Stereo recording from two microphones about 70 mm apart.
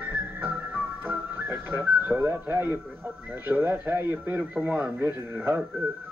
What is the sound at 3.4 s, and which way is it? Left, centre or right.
A man's voice, right.